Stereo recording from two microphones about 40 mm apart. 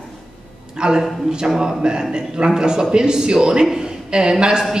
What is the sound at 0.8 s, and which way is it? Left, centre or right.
A woman's voice, centre.